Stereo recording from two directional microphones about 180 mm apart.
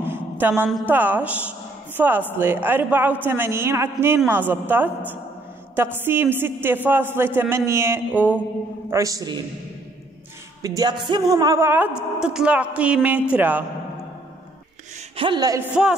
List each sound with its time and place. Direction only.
0.0 s a sound: 10° right (ahead or behind)
0.8 s a woman's voice: 10° right (ahead or behind)
10.6 s a woman's voice: 20° right (ahead or behind)
15.1 s a woman's voice: 25° right (ahead or behind)